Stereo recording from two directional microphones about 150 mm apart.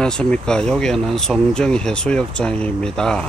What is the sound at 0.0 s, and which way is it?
Speech, 5° left (ahead or behind).